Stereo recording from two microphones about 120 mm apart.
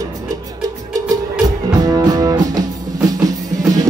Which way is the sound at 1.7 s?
30° right (ahead or behind).